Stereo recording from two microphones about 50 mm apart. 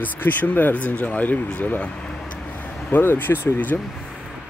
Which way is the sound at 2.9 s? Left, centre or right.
Left.